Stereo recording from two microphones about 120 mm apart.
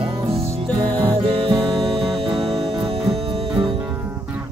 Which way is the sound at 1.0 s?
50° right (ahead or behind).